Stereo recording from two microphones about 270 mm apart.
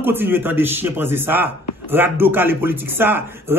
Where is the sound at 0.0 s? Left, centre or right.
Centre.